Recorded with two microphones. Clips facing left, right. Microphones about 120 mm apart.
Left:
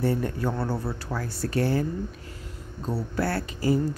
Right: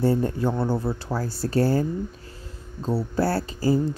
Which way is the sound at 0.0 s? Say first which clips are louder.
Right 4 dB; 30° right (ahead or behind).